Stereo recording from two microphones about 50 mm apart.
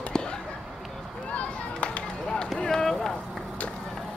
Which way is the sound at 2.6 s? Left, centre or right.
Centre.